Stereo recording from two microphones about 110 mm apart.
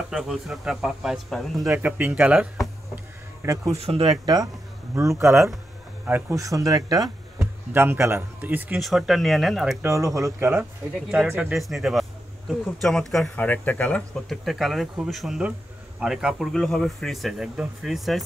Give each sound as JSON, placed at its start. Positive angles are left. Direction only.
{"t": 0.1, "sound": "speech", "side_deg": -5}
{"t": 1.7, "sound": "speech", "side_deg": -15}
{"t": 3.7, "sound": "speech", "side_deg": -65}
{"t": 4.9, "sound": "a man's voice", "side_deg": -25}
{"t": 6.3, "sound": "speech", "side_deg": -30}
{"t": 7.7, "sound": "a man's voice", "side_deg": -20}
{"t": 8.8, "sound": "speech", "side_deg": 0}
{"t": 9.8, "sound": "a man's voice", "side_deg": -25}
{"t": 10.5, "sound": "a man's voice", "side_deg": -10}
{"t": 11.5, "sound": "speech", "side_deg": 0}
{"t": 13.4, "sound": "speech", "side_deg": 15}
{"t": 14.1, "sound": "speech", "side_deg": 0}